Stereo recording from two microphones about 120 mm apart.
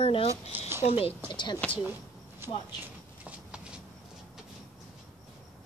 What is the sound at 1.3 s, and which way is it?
Speech, 40° left (ahead or behind).